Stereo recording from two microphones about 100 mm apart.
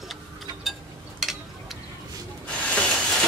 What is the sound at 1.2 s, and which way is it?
Stir, 5° right (ahead or behind).